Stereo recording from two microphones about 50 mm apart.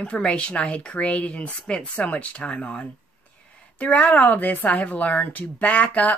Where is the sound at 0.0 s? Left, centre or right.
Left.